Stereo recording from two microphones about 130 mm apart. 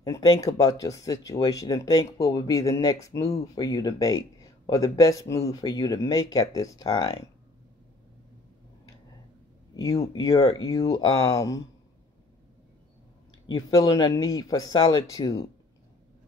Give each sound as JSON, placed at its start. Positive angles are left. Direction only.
{"t": 0.0, "sound": "speech", "side_deg": 25}
{"t": 9.8, "sound": "speech", "side_deg": 25}
{"t": 13.5, "sound": "speech", "side_deg": 30}